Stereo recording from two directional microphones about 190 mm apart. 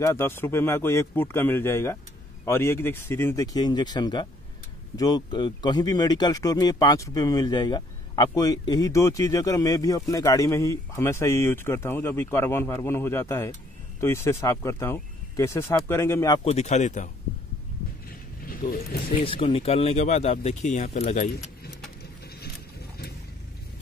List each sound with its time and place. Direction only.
0.0 s speech: 15° left (ahead or behind)
16.4 s speech: 35° left (ahead or behind)
18.4 s vehicle: 50° left (ahead or behind)
19.2 s speech: 30° left (ahead or behind)